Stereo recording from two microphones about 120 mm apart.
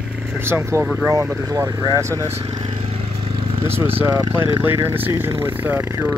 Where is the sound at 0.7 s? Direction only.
20° right (ahead or behind).